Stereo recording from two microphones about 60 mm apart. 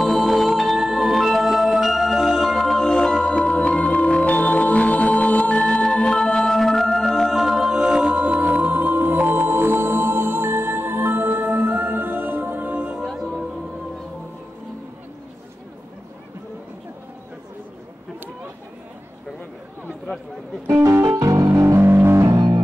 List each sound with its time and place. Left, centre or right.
0.0 s music: centre; by 13.0 s right
13.0 s music: centre
21.0 s music: right
21.5 s music: right
22.2 s music: right